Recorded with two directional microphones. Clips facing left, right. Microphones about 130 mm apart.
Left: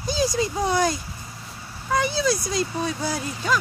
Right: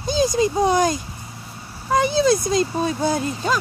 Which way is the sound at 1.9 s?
20° right (ahead or behind).